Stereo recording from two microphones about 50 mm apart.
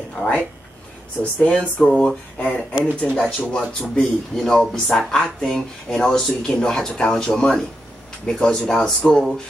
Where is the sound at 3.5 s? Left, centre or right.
Centre.